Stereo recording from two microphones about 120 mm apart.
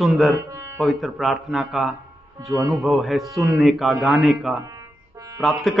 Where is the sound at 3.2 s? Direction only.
25° right (ahead or behind).